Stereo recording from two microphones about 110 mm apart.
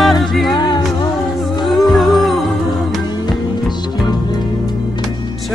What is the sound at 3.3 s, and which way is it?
Music, 40° left (ahead or behind).